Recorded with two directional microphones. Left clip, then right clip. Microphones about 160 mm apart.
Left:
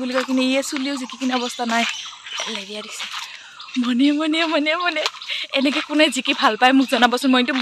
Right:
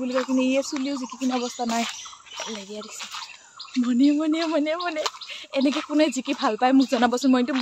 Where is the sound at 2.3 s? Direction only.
5° left (ahead or behind).